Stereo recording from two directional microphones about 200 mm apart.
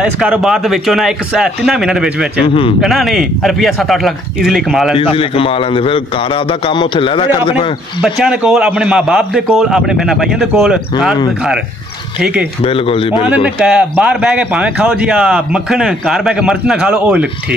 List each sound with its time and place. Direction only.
0.0 s speech: 5° right (ahead or behind)
2.4 s a man's voice: 25° left (ahead or behind)
2.8 s speech: centre (ahead or behind)
4.9 s a man's voice: 25° left (ahead or behind)
8.0 s speech: 5° right (ahead or behind)
12.2 s speech: 5° right (ahead or behind)
12.6 s a man's voice: 30° left (ahead or behind)
13.3 s speech: 5° right (ahead or behind)